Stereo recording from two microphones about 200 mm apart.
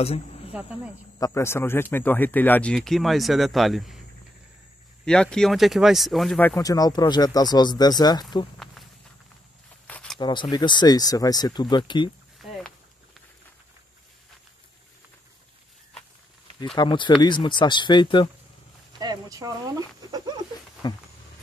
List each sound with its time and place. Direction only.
0.0 s speech: 30° left (ahead or behind)
1.2 s speech: 15° left (ahead or behind)
5.0 s speech: 5° left (ahead or behind)
6.6 s speech: 20° left (ahead or behind)
9.8 s a sound: 5° left (ahead or behind)
10.1 s speech: 25° left (ahead or behind)
12.4 s walk: centre (ahead or behind)
16.7 s speech: 25° left (ahead or behind)
18.9 s a sound: 20° right (ahead or behind)
20.8 s speech: 20° left (ahead or behind)